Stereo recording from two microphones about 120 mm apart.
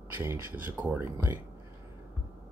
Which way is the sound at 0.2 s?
15° right (ahead or behind).